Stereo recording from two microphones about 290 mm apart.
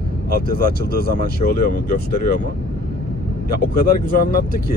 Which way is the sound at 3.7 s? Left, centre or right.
Left.